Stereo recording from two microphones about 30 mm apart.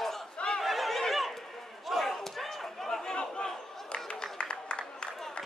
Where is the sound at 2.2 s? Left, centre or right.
Centre.